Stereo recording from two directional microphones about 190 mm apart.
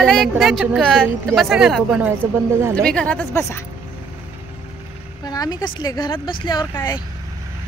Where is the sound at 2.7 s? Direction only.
5° left (ahead or behind).